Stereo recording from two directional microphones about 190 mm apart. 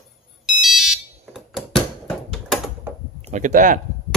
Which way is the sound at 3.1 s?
35° right (ahead or behind).